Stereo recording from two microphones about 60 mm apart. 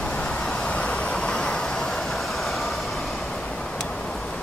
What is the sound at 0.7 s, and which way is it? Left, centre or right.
Vehicle, centre.